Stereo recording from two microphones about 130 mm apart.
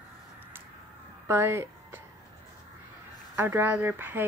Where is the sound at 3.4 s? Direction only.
15° right (ahead or behind).